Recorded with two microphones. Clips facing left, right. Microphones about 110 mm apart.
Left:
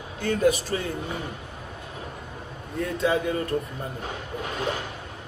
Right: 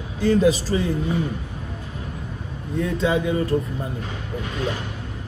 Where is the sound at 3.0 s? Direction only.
25° right (ahead or behind).